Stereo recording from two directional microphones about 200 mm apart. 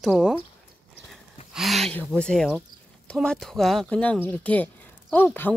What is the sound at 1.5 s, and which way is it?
Speech, centre (ahead or behind).